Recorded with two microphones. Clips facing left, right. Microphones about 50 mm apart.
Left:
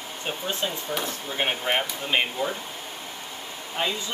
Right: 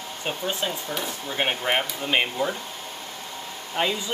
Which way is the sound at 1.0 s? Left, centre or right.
Centre.